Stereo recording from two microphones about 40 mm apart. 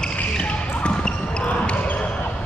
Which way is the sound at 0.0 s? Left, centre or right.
Left.